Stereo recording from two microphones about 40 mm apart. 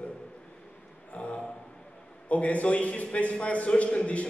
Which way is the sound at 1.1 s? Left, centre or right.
Left.